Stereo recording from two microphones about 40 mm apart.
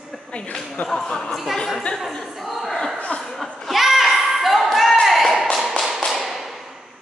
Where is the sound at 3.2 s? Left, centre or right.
Centre.